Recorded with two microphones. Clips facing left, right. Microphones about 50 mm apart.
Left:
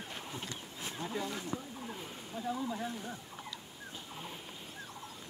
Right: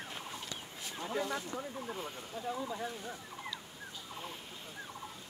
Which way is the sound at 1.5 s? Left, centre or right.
Centre.